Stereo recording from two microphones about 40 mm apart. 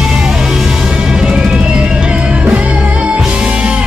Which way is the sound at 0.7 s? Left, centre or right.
Centre.